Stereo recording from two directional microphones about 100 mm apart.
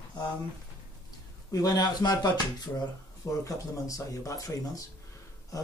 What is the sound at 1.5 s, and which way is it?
Speech, 40° left (ahead or behind).